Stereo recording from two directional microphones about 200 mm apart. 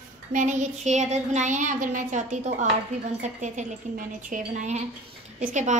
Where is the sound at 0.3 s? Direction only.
40° right (ahead or behind).